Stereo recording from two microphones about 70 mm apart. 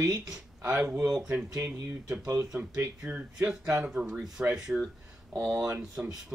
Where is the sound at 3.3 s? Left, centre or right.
Centre.